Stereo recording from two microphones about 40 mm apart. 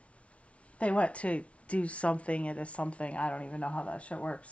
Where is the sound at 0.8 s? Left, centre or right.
Left.